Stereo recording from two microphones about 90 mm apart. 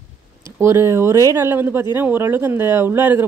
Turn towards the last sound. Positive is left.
turn(degrees=-25)  # may be behind; listen again after turning